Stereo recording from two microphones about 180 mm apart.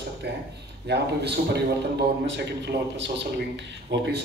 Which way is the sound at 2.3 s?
80° right.